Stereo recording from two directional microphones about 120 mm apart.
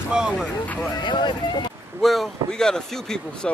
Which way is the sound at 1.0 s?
40° left (ahead or behind).